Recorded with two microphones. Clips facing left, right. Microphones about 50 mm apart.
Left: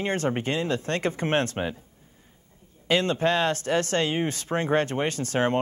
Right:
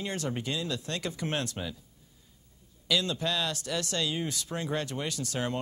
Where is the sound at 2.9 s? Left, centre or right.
Left.